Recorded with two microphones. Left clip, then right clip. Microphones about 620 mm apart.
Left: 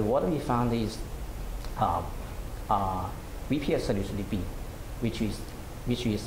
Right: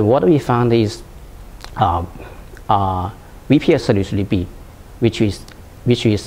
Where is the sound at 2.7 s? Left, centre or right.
Right.